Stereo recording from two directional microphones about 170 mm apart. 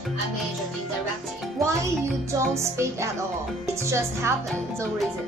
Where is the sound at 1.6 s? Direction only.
15° right (ahead or behind).